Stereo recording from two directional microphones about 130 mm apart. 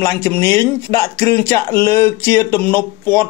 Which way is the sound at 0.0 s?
20° left (ahead or behind).